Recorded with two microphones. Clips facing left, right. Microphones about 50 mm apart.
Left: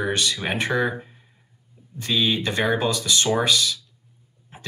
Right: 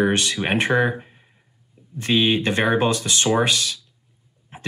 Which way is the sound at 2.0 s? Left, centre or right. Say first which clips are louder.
Right 4 dB; right.